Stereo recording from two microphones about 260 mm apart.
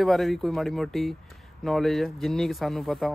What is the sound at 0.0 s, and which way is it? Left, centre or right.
Speech, centre.